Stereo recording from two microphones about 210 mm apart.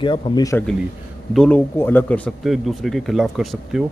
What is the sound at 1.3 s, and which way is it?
Speech, 5° left (ahead or behind).